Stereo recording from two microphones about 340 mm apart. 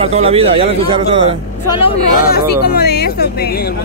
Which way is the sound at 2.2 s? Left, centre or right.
Left.